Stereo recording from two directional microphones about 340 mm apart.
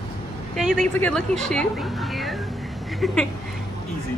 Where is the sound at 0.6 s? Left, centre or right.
Centre.